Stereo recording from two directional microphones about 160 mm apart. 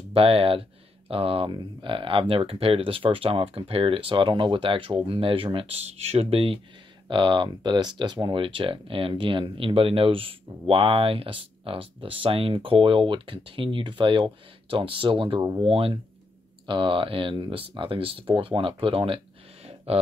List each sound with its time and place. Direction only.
0.1 s speech: 35° right (ahead or behind)